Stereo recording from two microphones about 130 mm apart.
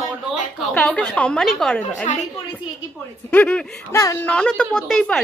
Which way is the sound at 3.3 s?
10° left (ahead or behind).